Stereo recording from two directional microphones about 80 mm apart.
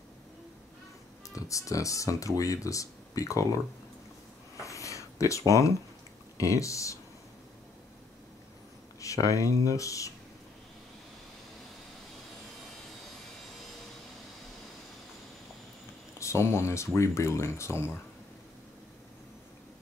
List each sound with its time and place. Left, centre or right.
1.3 s speech: left
4.6 s a sound: left
6.3 s speech: left
9.0 s speech: left
16.2 s speech: left